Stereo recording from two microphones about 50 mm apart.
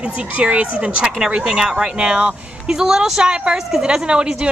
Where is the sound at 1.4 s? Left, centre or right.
Centre.